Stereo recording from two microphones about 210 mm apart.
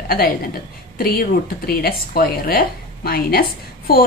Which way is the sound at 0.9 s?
45° left (ahead or behind).